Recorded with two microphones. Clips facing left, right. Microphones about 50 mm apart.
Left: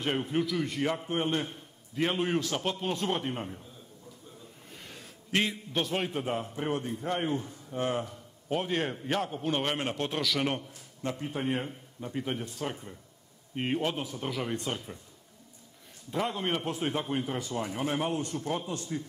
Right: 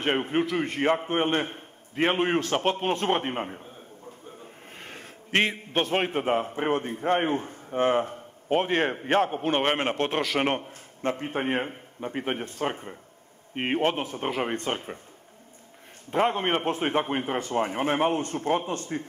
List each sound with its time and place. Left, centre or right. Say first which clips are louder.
0.0 s a man's voice: right 5 dB; right
16.1 s a man's voice: right 7 dB; right